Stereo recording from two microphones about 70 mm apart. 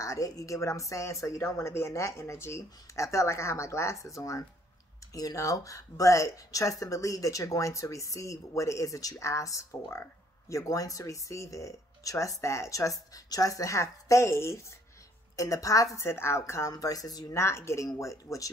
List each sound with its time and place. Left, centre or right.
0.0 s speech: left
15.3 s speech: left
16.0 s speech: left
16.7 s speech: left
17.3 s speech: left